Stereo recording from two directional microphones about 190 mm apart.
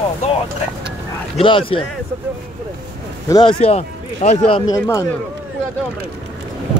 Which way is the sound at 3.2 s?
20° left (ahead or behind).